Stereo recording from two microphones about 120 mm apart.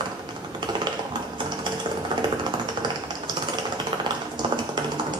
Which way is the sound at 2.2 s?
40° right (ahead or behind).